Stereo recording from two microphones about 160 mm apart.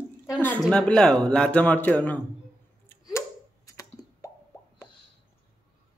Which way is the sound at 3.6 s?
20° left (ahead or behind).